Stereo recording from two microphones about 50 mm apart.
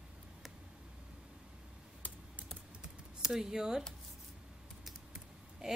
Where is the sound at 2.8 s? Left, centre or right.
Centre.